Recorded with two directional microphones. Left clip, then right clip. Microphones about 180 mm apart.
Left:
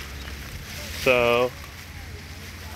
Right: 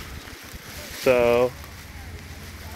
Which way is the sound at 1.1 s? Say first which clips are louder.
Right 1 dB; 25° right (ahead or behind).